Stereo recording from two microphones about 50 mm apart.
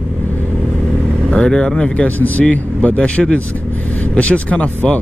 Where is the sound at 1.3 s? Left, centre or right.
Centre.